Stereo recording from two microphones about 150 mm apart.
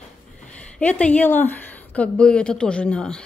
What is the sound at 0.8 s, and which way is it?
Speech, 10° left (ahead or behind).